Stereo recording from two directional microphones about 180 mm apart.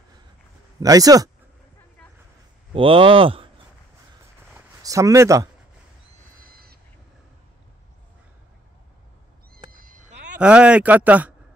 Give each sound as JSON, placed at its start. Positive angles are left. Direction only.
{"t": 0.7, "sound": "speech", "side_deg": -20}
{"t": 2.7, "sound": "speech", "side_deg": -30}
{"t": 4.8, "sound": "speech", "side_deg": -20}
{"t": 6.4, "sound": "crow", "side_deg": -55}
{"t": 9.7, "sound": "cat", "side_deg": -50}
{"t": 10.4, "sound": "speech", "side_deg": -5}